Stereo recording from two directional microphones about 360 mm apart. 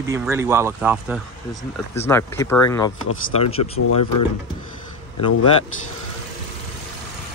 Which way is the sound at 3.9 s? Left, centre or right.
Left.